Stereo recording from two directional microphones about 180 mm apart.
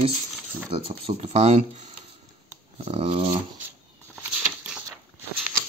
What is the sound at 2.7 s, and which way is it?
Dog, 30° right (ahead or behind).